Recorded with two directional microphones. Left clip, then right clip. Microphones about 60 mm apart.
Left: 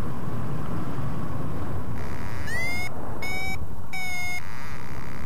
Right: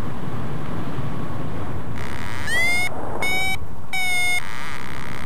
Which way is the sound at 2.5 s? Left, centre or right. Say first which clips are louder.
Right 10 dB; centre.